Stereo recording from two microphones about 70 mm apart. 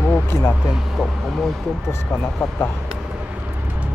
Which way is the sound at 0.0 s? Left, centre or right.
Left.